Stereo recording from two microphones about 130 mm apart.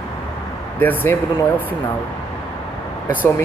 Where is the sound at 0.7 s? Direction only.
15° left (ahead or behind).